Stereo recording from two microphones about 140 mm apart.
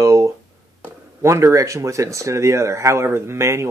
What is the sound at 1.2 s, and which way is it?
Speech, 20° right (ahead or behind).